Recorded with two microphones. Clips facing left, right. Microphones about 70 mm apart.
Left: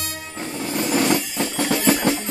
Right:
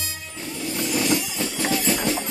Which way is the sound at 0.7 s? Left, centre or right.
Left.